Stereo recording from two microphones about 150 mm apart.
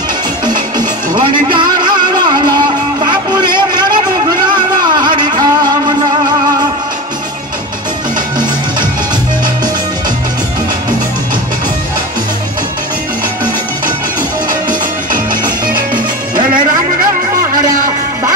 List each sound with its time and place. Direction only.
0.5 s music: 30° right (ahead or behind)
3.1 s vehicle: 30° right (ahead or behind)
4.5 s music: 30° right (ahead or behind)
15.6 s music: 30° right (ahead or behind)